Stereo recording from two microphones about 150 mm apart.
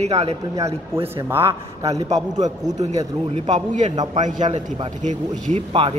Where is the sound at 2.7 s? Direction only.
50° right (ahead or behind).